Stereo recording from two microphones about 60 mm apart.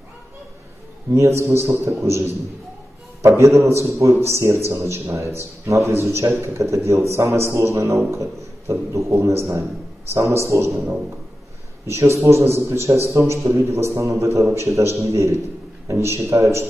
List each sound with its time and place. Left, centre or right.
1.1 s a man's voice: right
3.2 s a man's voice: right
11.9 s a man's voice: right